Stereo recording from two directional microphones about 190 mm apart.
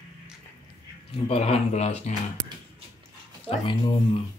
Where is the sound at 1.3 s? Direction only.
35° left (ahead or behind).